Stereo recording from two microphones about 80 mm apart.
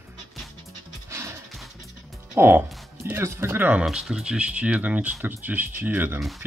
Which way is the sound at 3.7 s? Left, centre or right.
Centre.